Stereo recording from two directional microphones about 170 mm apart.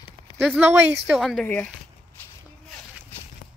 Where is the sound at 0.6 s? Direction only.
15° right (ahead or behind).